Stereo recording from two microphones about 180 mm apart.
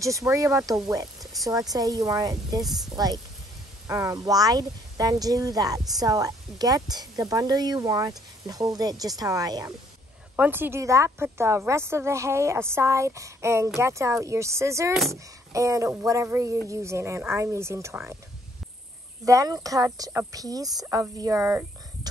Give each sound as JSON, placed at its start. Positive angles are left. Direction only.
{"t": 0.0, "sound": "a woman's voice", "side_deg": -15}
{"t": 2.6, "sound": "speech", "side_deg": 0}
{"t": 3.8, "sound": "a woman's voice", "side_deg": -15}
{"t": 19.2, "sound": "a woman's voice", "side_deg": -20}